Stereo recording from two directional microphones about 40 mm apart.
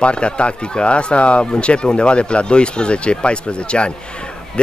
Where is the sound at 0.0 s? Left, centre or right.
Left.